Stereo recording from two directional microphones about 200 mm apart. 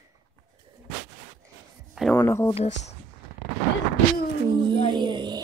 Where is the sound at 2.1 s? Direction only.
15° left (ahead or behind).